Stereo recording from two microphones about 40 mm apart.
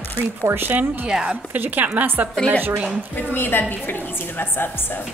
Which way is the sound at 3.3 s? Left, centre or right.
Left.